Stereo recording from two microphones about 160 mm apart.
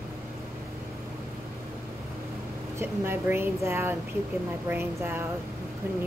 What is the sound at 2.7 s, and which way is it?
Speech, 15° right (ahead or behind).